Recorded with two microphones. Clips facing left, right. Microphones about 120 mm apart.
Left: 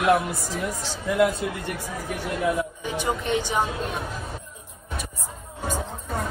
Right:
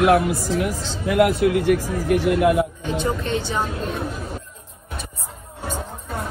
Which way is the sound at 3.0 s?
15° left (ahead or behind).